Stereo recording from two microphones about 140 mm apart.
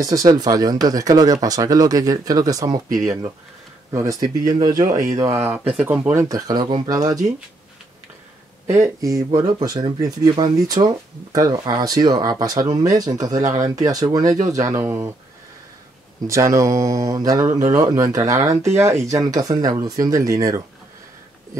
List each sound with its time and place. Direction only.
0.0 s speech: 25° right (ahead or behind)
3.9 s speech: 25° right (ahead or behind)
8.7 s speech: 20° right (ahead or behind)
16.3 s speech: 20° right (ahead or behind)